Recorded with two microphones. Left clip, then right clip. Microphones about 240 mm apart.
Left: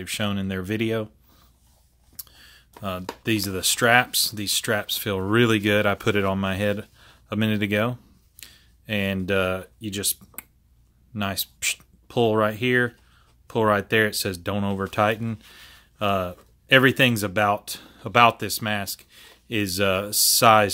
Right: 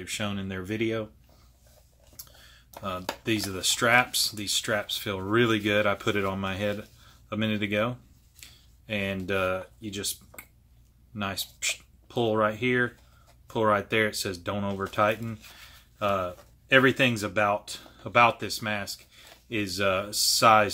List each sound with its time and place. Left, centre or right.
0.0 s speech: left
2.1 s speech: left
8.4 s a sound: left
11.1 s speech: left